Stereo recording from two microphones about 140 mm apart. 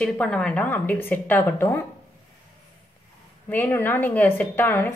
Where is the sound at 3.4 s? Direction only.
15° left (ahead or behind).